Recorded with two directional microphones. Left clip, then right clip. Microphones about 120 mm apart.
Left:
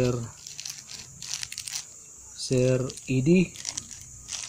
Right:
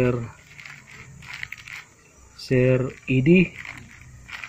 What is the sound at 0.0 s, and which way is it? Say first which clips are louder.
Speech: right 4 dB; 15° left (ahead or behind).